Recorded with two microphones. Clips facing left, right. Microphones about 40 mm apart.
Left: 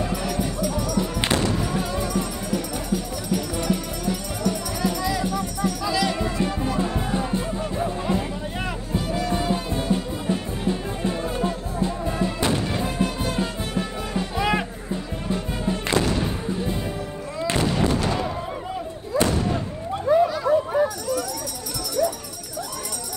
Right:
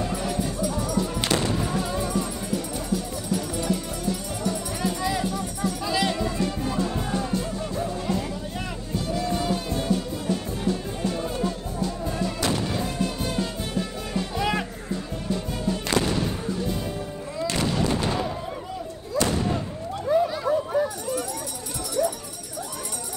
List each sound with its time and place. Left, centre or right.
0.1 s music: left
5.9 s music: right
6.1 s music: left
17.6 s a sound: left
19.4 s fireworks: left
20.4 s dog: left
22.0 s jingle bell: centre